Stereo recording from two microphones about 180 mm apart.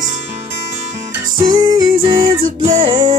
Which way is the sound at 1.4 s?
25° right (ahead or behind).